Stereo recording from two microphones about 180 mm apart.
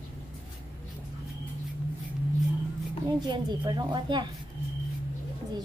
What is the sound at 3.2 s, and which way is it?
Speech, 25° right (ahead or behind).